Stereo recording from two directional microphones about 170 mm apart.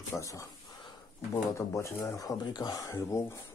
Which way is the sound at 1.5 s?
15° left (ahead or behind).